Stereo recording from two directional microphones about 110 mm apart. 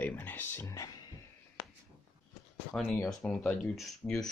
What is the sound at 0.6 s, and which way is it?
Speech, 30° left (ahead or behind).